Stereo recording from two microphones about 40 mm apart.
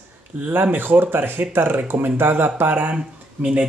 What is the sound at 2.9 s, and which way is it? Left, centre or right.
Speech, right.